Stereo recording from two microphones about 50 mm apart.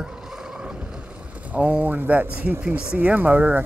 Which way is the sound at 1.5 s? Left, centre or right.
Right.